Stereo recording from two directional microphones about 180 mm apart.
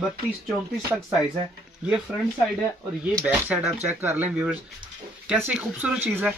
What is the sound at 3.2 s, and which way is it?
Speech, 5° right (ahead or behind).